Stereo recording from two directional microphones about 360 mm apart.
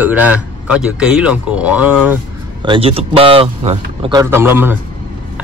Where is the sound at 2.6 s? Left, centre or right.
Centre.